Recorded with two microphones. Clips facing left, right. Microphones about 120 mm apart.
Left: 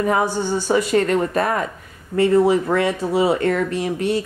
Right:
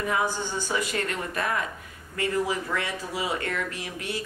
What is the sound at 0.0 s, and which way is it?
Speech, 40° left (ahead or behind).